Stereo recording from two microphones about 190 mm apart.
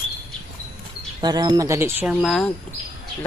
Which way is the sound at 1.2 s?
20° right (ahead or behind).